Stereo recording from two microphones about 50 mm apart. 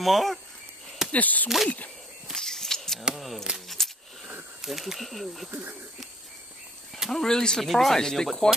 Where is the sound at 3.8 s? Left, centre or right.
Centre.